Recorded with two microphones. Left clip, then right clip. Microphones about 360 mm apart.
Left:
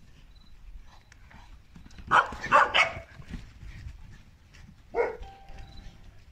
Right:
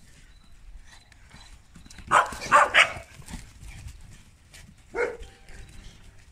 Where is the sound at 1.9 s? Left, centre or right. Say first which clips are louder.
Right 2 dB; centre.